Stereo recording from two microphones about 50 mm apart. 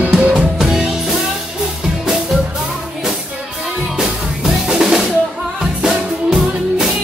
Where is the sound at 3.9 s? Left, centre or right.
Centre.